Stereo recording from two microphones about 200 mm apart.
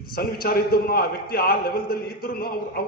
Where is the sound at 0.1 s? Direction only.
50° left (ahead or behind).